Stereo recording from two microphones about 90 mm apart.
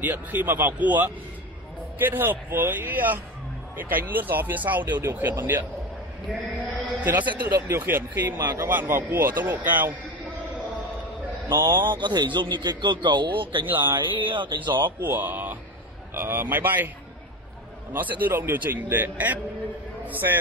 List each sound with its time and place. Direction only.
0.0 s a man's voice: 20° right (ahead or behind)
6.6 s chant: 20° right (ahead or behind)
7.6 s a man's voice: 25° right (ahead or behind)
8.4 s a man's voice: 35° right (ahead or behind)
8.6 s a man's voice: 25° right (ahead or behind)
11.7 s speech: 60° right (ahead or behind)
15.0 s a man's voice: 20° right (ahead or behind)
17.9 s a man's voice: 20° right (ahead or behind)